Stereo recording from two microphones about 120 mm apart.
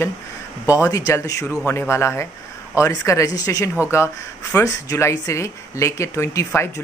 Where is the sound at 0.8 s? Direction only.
30° left (ahead or behind).